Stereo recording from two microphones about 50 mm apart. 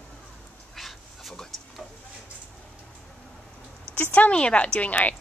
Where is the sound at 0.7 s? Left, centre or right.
Centre.